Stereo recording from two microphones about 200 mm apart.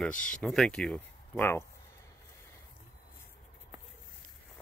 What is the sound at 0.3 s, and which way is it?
Speech, 5° left (ahead or behind).